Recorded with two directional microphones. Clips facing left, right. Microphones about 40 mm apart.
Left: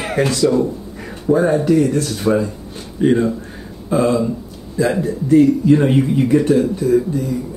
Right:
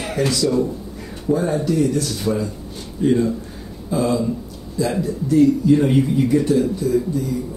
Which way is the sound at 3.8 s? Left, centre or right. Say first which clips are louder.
Left 4 dB; left.